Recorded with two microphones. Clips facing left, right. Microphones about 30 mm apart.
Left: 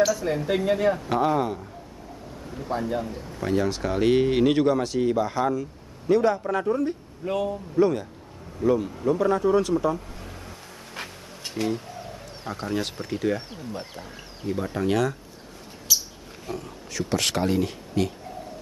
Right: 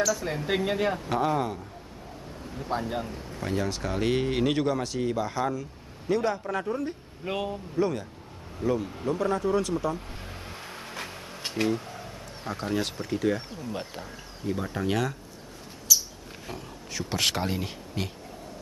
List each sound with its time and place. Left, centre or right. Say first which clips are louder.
0.1 s speech: left 3 dB; centre
0.9 s speech: left 3 dB; centre
2.7 s speech: left 2 dB; right
3.3 s speech: left 5 dB; centre
7.2 s a man's voice: left 5 dB; right
7.7 s speech: left 6 dB; centre
9.9 s vehicle: left 2 dB; right
11.1 s a sound: right 2 dB; right
11.6 s speech: even; centre
12.0 s speech: left 2 dB; centre
14.5 s speech: left 4 dB; centre
15.9 s wild animals: even; left
16.4 s speech: left 5 dB; centre